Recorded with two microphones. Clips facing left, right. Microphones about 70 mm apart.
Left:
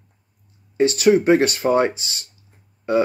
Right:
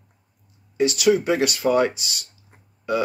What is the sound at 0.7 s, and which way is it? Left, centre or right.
Speech, left.